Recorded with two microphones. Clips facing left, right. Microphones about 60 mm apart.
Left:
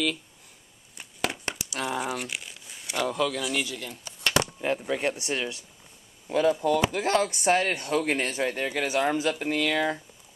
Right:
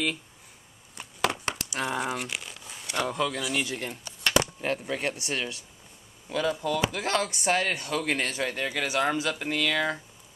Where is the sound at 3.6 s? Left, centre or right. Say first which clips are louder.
Right 3 dB; right.